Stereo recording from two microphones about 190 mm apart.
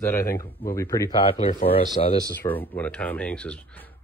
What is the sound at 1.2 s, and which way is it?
Speech, 30° left (ahead or behind).